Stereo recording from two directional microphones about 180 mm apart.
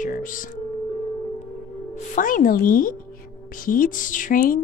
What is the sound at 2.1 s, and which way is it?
A woman's voice, 50° left (ahead or behind).